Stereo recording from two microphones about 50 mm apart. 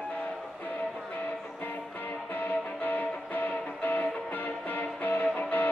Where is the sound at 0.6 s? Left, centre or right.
Left.